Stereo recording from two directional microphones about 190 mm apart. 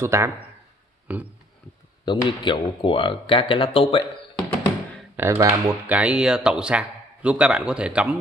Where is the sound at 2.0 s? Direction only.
25° left (ahead or behind).